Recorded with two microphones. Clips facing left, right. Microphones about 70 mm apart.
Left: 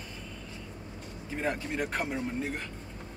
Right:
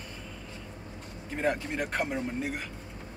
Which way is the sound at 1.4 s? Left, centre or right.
Centre.